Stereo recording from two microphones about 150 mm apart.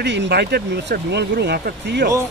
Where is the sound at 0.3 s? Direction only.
90° right.